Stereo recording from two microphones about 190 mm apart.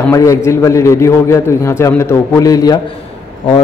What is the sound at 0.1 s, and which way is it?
A man's voice, 15° left (ahead or behind).